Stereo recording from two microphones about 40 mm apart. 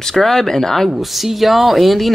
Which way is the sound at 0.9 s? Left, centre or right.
Centre.